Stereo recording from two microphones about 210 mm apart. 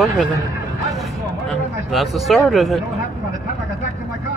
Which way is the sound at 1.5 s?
Centre (ahead or behind).